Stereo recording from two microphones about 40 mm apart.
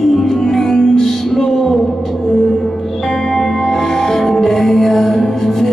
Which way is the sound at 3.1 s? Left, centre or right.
Centre.